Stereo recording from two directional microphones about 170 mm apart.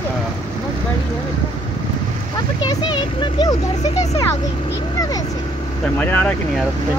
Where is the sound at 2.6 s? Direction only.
25° left (ahead or behind).